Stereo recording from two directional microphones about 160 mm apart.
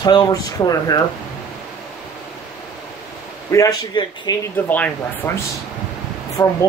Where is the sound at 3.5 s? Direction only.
20° left (ahead or behind).